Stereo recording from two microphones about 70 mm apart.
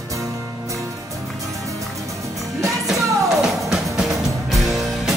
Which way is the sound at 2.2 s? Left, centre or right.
Centre.